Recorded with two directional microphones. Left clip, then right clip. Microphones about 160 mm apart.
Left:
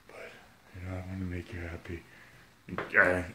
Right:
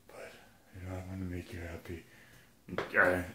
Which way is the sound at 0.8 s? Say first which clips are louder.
Left 2 dB; 25° left (ahead or behind).